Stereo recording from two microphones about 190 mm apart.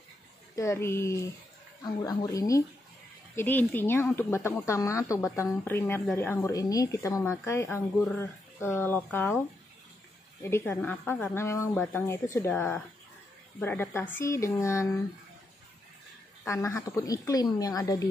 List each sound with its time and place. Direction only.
0.6 s speech: 15° left (ahead or behind)
10.4 s speech: 10° left (ahead or behind)
16.4 s speech: 15° left (ahead or behind)